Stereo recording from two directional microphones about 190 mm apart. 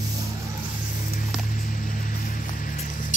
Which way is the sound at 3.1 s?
45° left (ahead or behind).